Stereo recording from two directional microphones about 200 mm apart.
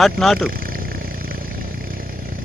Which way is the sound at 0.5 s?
45° right (ahead or behind).